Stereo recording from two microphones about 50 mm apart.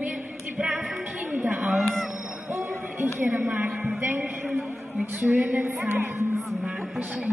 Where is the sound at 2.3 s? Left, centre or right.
Right.